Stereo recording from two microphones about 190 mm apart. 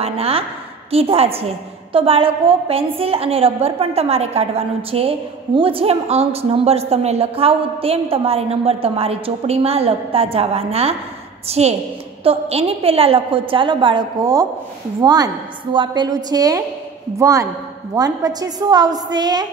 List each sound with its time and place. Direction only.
0.0 s a woman's voice: 30° right (ahead or behind)